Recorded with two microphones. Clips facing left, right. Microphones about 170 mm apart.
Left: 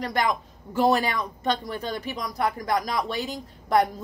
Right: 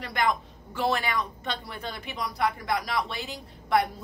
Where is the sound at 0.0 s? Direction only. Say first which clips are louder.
Left 2 dB; 40° left (ahead or behind).